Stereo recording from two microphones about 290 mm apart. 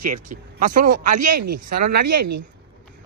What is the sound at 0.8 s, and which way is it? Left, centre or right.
Speech, right.